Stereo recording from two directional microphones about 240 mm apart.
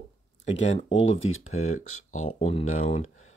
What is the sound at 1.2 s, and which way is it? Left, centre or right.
Speech, left.